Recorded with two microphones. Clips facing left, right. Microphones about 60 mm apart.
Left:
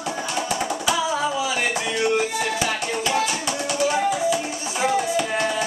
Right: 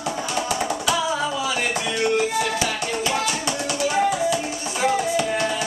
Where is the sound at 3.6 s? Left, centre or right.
Centre.